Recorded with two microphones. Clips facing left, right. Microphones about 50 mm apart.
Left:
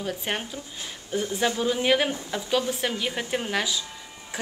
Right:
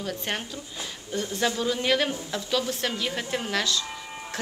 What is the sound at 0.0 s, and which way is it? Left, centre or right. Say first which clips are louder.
A woman's voice: left 1 dB; centre.